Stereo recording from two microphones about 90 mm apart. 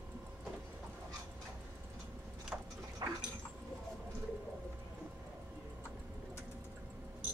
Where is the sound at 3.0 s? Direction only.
45° right (ahead or behind).